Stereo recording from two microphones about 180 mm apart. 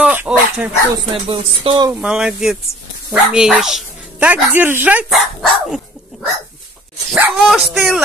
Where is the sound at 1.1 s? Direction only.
30° right (ahead or behind).